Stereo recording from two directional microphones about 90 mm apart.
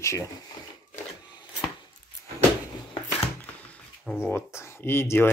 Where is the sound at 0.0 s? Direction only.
35° left (ahead or behind).